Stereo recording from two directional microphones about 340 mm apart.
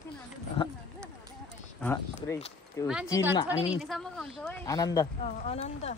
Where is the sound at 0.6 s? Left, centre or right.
Centre.